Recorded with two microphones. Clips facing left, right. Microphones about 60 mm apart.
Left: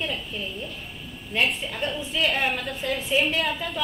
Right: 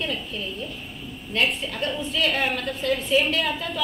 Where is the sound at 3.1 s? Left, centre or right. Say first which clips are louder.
Right 2 dB; centre.